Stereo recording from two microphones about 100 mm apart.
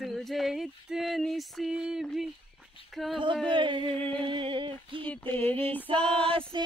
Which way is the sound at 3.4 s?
55° right (ahead or behind).